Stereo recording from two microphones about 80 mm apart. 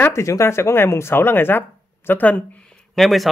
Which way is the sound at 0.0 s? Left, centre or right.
Left.